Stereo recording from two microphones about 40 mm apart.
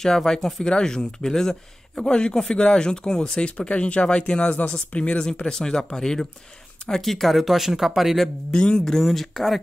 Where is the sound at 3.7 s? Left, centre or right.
Left; by 8.2 s centre.